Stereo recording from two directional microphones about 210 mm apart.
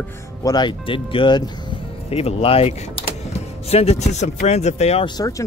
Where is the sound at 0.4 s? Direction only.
20° left (ahead or behind).